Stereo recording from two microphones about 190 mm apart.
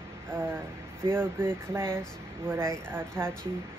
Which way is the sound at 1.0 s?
10° right (ahead or behind).